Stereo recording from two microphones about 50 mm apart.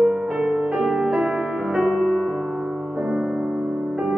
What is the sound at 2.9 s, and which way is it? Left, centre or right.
Music, centre.